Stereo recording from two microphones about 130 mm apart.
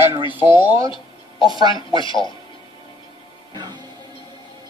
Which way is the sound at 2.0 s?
40° left (ahead or behind).